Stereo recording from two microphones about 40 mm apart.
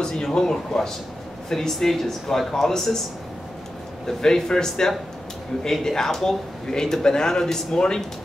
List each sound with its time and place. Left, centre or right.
0.0 s speech: centre
4.2 s speech: centre